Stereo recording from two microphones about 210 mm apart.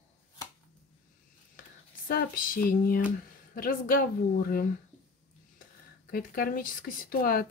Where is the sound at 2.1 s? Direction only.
45° left (ahead or behind).